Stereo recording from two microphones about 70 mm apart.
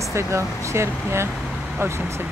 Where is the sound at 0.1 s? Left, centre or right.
Right.